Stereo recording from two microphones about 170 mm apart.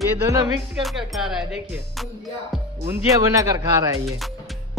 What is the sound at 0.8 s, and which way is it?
Speech, centre (ahead or behind).